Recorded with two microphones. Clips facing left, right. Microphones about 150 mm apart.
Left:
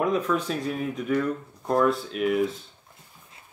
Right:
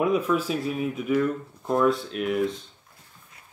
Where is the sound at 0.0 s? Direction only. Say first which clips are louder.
Right 1 dB; 5° right (ahead or behind).